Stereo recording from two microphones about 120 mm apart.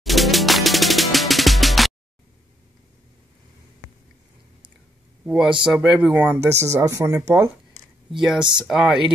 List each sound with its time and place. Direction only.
0.0 s music: centre (ahead or behind)
5.2 s speech: 5° right (ahead or behind); by 7.8 s 25° right (ahead or behind)
8.2 s speech: 5° right (ahead or behind)